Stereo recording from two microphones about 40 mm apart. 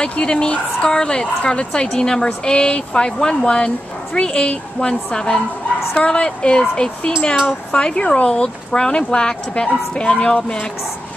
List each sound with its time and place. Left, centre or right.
0.0 s speech: left